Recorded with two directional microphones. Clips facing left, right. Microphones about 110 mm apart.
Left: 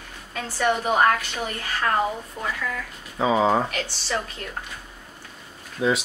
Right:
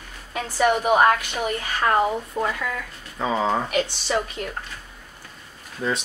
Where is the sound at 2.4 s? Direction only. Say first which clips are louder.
Right 7 dB; 45° right (ahead or behind).